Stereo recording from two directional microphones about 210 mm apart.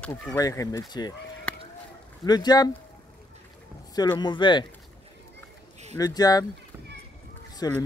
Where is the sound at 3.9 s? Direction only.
20° left (ahead or behind).